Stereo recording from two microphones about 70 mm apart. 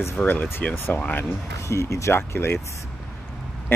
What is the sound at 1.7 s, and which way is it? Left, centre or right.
Speech, left.